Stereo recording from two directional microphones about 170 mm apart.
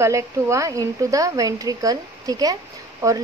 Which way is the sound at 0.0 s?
15° right (ahead or behind).